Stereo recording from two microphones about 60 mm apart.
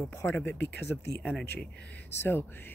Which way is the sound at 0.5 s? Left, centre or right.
Left.